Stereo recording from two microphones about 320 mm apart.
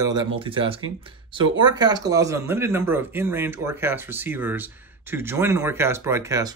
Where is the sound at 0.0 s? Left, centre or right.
Centre.